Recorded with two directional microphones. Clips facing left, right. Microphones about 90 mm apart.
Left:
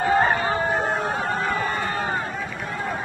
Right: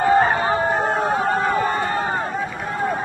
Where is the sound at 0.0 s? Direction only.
35° right (ahead or behind).